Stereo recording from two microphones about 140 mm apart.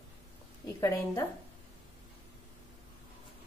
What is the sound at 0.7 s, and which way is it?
Speech, 20° left (ahead or behind).